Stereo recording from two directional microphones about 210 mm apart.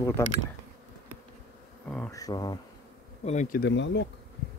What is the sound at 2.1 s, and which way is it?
Speech, 15° left (ahead or behind).